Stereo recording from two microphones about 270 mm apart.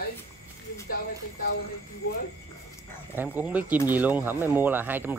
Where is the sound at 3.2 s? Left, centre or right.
Centre.